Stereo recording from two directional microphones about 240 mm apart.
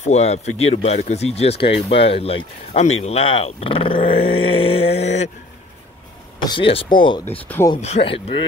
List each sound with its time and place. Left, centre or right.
0.0 s speech: left
6.4 s speech: left
7.2 s speech: centre
7.7 s speech: left